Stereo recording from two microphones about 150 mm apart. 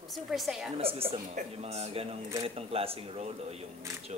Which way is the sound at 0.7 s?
40° right (ahead or behind).